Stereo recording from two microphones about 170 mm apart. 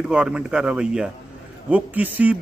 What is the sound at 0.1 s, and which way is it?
A man's voice, 5° right (ahead or behind).